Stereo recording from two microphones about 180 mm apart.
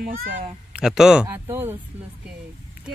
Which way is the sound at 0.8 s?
5° right (ahead or behind).